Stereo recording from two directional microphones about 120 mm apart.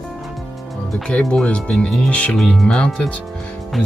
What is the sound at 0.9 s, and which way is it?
Speech, 5° left (ahead or behind).